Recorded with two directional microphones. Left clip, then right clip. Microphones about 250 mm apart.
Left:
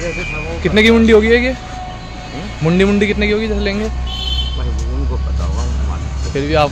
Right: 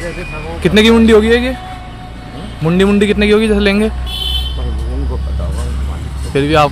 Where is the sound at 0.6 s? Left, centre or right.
Centre.